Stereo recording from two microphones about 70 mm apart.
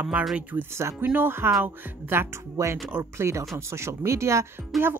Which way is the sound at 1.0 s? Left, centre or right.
Right.